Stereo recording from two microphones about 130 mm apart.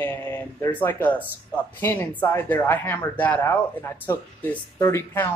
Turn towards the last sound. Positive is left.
turn(degrees=20)  # may be behind; listen again after turning